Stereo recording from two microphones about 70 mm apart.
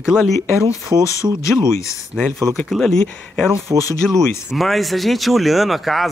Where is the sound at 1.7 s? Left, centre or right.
Left.